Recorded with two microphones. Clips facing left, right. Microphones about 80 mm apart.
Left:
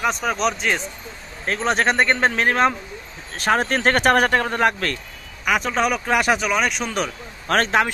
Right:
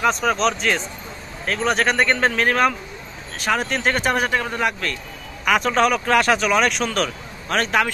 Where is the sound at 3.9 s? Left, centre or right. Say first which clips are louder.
Left 6 dB; left.